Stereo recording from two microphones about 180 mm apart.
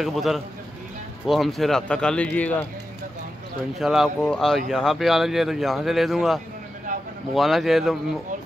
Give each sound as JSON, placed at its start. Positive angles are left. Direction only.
{"t": 0.0, "sound": "a man's voice", "side_deg": 0}
{"t": 3.7, "sound": "a man's voice", "side_deg": 0}
{"t": 6.9, "sound": "vehicle", "side_deg": -45}
{"t": 7.3, "sound": "a man's voice", "side_deg": 0}